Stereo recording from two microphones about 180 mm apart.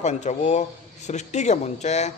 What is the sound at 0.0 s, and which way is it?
Speech, 40° left (ahead or behind).